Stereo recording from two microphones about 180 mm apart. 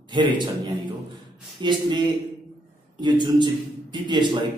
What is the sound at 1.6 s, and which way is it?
A man's voice, 25° right (ahead or behind).